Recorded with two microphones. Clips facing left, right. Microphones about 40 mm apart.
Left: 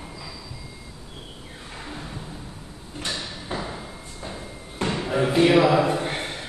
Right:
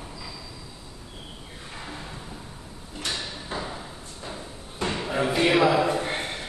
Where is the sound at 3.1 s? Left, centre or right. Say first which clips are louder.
Left 1 dB; centre.